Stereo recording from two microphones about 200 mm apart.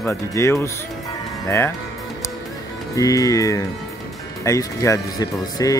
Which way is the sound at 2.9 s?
15° left (ahead or behind).